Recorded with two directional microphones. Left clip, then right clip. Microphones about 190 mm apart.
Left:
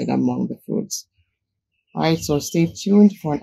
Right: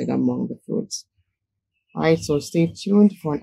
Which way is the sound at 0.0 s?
35° left (ahead or behind).